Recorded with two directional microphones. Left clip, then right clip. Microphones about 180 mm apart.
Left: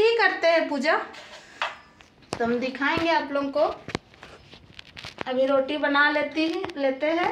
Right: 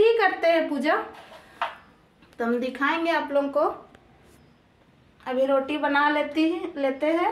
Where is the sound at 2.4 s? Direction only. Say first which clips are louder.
Even; 10° left (ahead or behind).